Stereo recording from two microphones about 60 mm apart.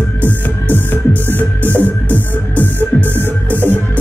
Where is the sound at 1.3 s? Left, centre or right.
Left.